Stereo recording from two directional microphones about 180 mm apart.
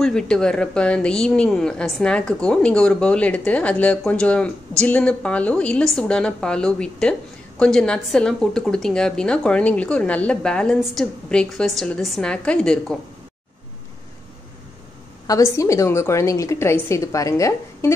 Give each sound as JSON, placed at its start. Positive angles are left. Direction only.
{"t": 0.0, "sound": "a woman's voice", "side_deg": 5}
{"t": 15.2, "sound": "a woman's voice", "side_deg": 20}